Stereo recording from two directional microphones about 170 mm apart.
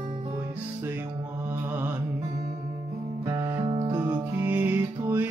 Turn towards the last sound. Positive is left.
turn(degrees=-10)  # may be behind; listen again after turning